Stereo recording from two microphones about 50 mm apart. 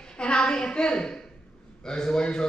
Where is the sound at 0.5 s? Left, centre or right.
Centre.